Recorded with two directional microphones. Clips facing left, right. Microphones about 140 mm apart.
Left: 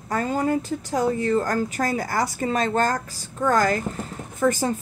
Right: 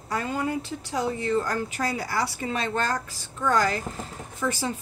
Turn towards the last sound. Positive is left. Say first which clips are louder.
# left 7 dB
turn(degrees=50)  # may be behind; listen again after turning